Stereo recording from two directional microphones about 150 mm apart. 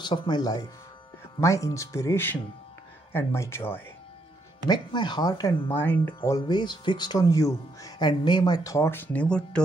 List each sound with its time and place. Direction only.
0.0 s speech: 30° left (ahead or behind)
4.6 s speech: 30° left (ahead or behind)
5.7 s speech: 10° left (ahead or behind)
6.3 s speech: 30° left (ahead or behind); by 9.6 s 5° left (ahead or behind)